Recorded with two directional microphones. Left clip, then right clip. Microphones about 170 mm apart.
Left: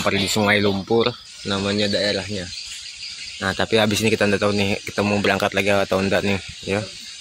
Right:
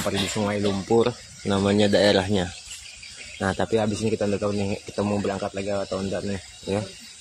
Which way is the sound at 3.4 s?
5° right (ahead or behind).